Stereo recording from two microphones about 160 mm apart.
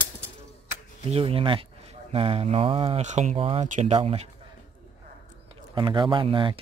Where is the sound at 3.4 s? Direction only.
35° right (ahead or behind).